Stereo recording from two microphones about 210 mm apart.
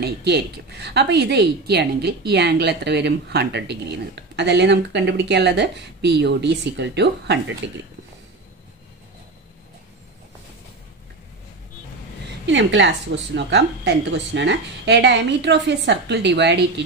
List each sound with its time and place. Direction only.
0.0 s a woman's voice: 50° right (ahead or behind)
12.4 s a woman's voice: 60° right (ahead or behind)